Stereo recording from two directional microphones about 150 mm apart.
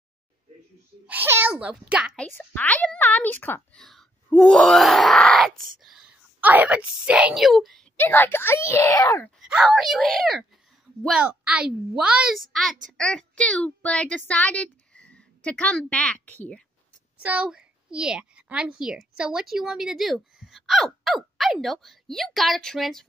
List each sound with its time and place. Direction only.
1.0 s a child's voice: 15° right (ahead or behind)
2.1 s a child's voice: 10° left (ahead or behind)
3.8 s groan: 5° left (ahead or behind)
8.0 s a child's voice: 15° left (ahead or behind)
9.4 s a child's voice: 5° right (ahead or behind)
17.2 s a child's voice: 10° right (ahead or behind)